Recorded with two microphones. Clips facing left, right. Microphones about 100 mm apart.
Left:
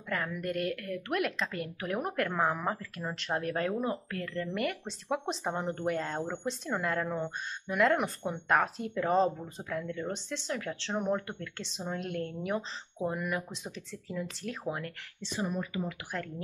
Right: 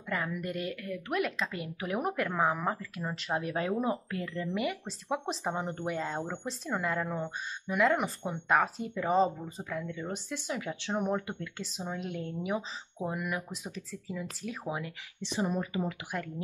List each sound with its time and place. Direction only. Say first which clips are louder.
0.1 s speech: left 1 dB; 5° right (ahead or behind)
15.3 s speech: right 2 dB; 25° right (ahead or behind)